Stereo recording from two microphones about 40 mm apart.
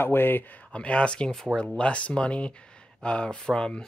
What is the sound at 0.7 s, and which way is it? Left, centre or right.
Speech, left.